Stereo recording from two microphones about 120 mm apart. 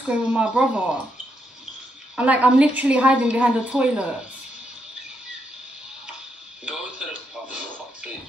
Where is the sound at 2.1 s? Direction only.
10° right (ahead or behind).